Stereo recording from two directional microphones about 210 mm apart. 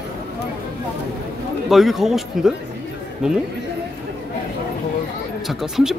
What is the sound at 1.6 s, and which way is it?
Speech, centre (ahead or behind).